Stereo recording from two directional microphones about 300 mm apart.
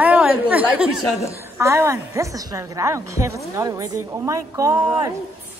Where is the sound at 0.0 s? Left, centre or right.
Centre.